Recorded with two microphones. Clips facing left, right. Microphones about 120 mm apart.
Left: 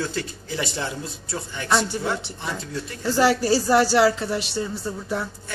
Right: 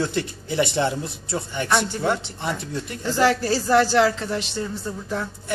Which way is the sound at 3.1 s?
10° left (ahead or behind).